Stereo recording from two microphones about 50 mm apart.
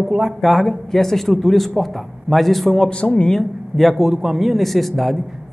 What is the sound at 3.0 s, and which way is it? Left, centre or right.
Speech, left.